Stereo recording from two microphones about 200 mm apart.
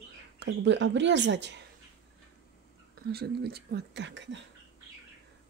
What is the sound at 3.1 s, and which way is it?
Speech, 50° right (ahead or behind).